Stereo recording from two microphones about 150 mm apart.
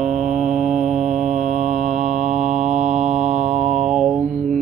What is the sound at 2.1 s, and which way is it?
Mantra, 50° right (ahead or behind).